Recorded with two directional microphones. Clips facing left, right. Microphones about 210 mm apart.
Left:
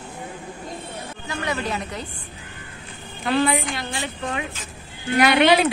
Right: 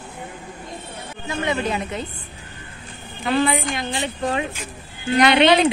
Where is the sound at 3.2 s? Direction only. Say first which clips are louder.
Right 1 dB; centre (ahead or behind).